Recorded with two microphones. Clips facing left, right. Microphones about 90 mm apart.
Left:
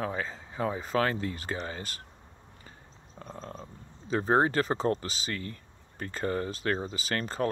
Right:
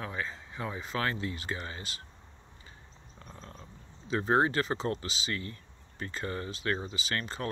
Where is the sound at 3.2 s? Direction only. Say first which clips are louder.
Left 7 dB; 40° left (ahead or behind).